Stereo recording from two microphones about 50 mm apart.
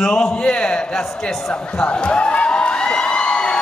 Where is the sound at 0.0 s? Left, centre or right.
Centre.